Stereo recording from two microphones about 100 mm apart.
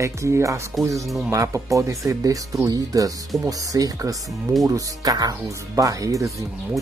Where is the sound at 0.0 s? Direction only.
30° right (ahead or behind).